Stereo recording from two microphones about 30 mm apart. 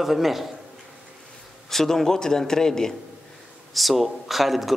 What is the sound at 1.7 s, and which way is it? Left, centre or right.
A man's voice, centre.